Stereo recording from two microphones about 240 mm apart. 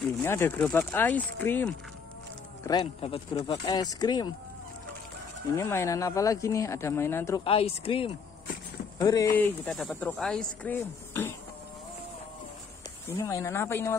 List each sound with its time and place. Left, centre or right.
0.2 s speech: centre
5.5 s speech: centre
7.4 s a woman's voice: left
13.1 s speech: centre